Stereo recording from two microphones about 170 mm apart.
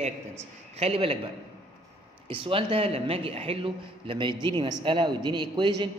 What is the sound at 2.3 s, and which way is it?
A man's voice, 30° right (ahead or behind).